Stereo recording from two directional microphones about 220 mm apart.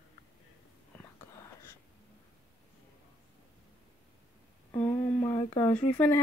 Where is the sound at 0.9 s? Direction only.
10° left (ahead or behind).